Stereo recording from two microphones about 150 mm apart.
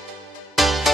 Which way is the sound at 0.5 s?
Centre (ahead or behind).